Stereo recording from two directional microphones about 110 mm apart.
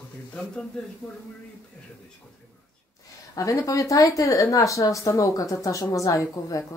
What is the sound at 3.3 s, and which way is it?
Speech, 30° left (ahead or behind).